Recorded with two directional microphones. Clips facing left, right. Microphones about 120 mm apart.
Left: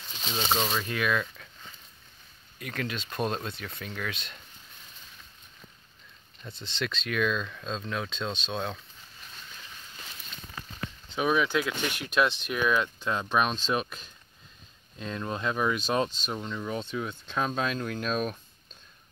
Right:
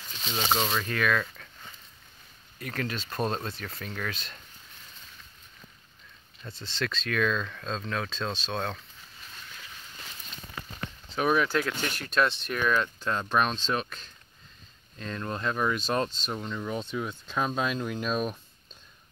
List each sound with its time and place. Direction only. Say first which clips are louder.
0.6 s speech: even; centre (ahead or behind)
0.8 s speech: right 1 dB; 10° left (ahead or behind)
2.6 s speech: right 1 dB; 5° left (ahead or behind)
6.5 s speech: right 1 dB; 25° left (ahead or behind)
7.1 s speech: even; 10° left (ahead or behind)
11.1 s speech: right 1 dB; centre (ahead or behind)